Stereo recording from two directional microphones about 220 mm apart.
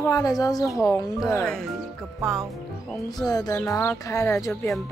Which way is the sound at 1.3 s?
5° left (ahead or behind).